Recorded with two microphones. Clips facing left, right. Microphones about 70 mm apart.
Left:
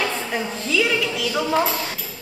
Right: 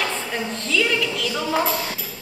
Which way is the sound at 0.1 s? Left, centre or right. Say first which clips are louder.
Left 1 dB; centre.